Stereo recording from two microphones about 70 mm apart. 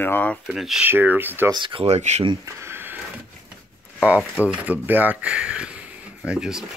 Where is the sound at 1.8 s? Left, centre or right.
Right.